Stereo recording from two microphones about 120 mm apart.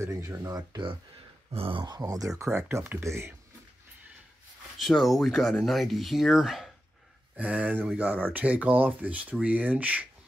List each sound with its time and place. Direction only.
0.0 s speech: 25° right (ahead or behind)
1.5 s speech: 50° right (ahead or behind)
2.0 s speech: 30° right (ahead or behind)
4.7 s speech: centre (ahead or behind)